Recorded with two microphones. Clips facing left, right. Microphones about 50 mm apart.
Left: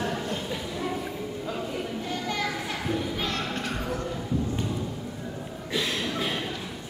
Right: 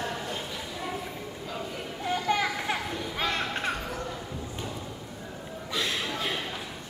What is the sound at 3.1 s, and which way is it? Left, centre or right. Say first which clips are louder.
Music: even; centre.